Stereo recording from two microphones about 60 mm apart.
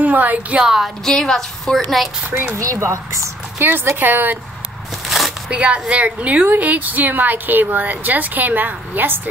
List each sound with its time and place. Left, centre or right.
0.0 s a woman's voice: right
0.7 s speech: centre
1.0 s a woman's voice: centre
2.5 s speech: right
3.5 s speech: right
5.0 s a sound: centre
5.5 s a woman's voice: right